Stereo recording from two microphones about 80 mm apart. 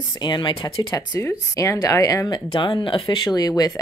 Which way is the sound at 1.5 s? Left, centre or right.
Left.